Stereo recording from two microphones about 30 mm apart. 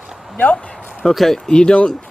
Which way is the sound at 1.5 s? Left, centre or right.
Left.